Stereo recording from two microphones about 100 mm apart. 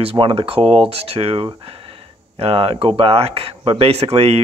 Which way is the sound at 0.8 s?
80° right.